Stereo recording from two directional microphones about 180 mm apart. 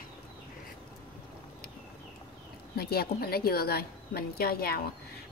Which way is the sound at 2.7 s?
60° left (ahead or behind).